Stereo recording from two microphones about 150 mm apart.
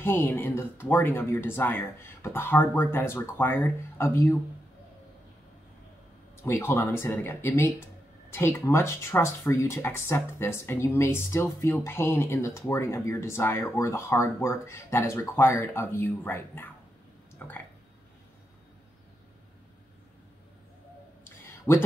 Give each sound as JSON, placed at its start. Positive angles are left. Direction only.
{"t": 0.0, "sound": "speech", "side_deg": 15}
{"t": 6.4, "sound": "speech", "side_deg": 15}
{"t": 21.7, "sound": "speech", "side_deg": 15}